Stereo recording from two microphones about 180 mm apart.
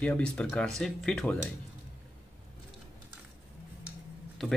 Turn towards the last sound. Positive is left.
turn(degrees=0)  # may be behind; listen again after turning